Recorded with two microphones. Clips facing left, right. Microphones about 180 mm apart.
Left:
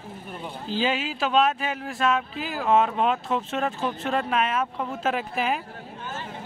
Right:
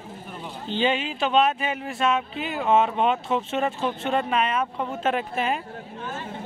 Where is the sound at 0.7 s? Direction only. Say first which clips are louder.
Right 2 dB; 5° left (ahead or behind).